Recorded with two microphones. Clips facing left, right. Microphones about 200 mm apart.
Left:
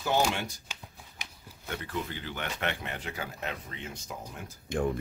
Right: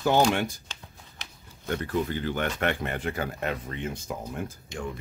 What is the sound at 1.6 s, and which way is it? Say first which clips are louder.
Speech: right 8 dB; 45° right (ahead or behind).